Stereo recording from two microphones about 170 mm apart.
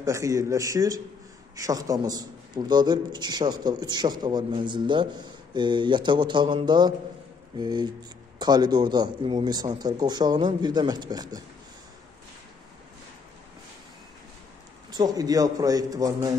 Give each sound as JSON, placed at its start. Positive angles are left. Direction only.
{"t": 0.0, "sound": "a man's voice", "side_deg": -20}
{"t": 14.9, "sound": "a man's voice", "side_deg": -25}